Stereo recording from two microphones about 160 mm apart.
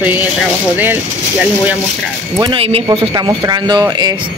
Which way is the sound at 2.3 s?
30° right (ahead or behind).